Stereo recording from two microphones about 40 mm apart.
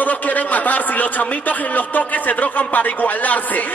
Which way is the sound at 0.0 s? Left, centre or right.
Left.